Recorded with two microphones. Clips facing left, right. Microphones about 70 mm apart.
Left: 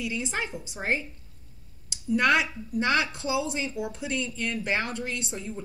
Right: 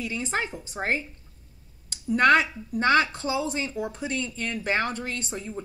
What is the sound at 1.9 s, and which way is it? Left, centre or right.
Speech, right.